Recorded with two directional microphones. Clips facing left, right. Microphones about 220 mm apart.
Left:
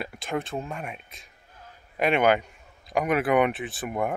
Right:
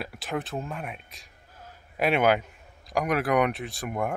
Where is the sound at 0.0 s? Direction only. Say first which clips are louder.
Left 2 dB; centre (ahead or behind).